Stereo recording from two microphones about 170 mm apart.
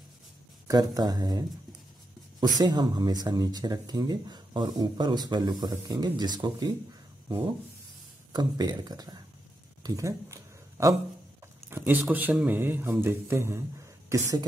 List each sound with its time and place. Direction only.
0.7 s speech: 25° right (ahead or behind)
2.4 s speech: 25° right (ahead or behind)
7.2 s rub: 25° right (ahead or behind)
8.3 s speech: 25° right (ahead or behind)
9.8 s a sound: 20° right (ahead or behind)
11.7 s speech: 10° right (ahead or behind)